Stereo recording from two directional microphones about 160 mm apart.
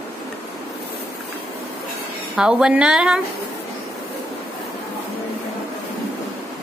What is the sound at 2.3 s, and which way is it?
Speech, 5° right (ahead or behind).